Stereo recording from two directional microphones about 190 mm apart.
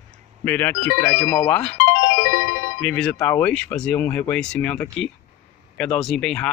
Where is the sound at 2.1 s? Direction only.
80° left.